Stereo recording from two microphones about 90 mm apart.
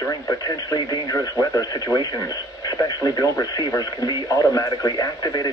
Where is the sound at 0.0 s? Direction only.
40° left (ahead or behind).